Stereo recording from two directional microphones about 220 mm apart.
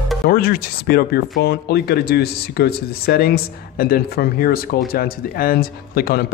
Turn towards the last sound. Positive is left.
turn(degrees=45)  # may be behind; listen again after turning